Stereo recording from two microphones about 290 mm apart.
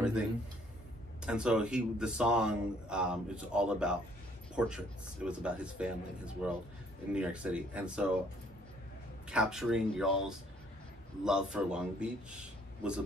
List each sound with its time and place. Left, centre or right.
1.2 s speech: centre
9.3 s speech: centre